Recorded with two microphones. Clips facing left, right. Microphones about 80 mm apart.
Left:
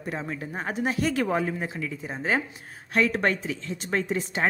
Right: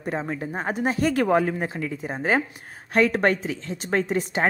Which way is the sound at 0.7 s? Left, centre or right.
Right.